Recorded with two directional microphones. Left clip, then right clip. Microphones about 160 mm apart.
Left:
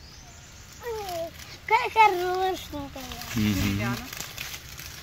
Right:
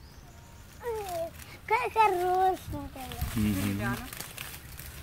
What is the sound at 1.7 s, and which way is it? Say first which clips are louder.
Speech: left 5 dB; 30° left (ahead or behind).